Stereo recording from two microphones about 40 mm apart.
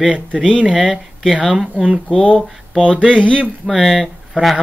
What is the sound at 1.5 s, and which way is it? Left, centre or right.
Speech, centre.